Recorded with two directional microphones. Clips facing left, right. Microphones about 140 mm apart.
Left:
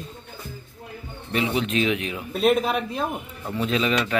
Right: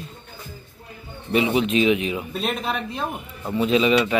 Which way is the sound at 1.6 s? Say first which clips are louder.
Right 3 dB; 5° right (ahead or behind).